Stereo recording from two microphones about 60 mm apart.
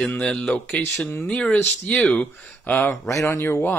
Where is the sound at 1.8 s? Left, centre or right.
Left.